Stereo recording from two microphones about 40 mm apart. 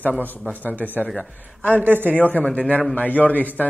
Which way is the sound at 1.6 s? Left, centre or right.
Left.